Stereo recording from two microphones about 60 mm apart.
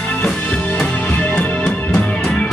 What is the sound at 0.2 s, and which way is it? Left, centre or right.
Music, left.